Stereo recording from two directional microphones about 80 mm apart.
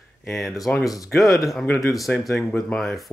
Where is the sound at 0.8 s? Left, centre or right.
Left.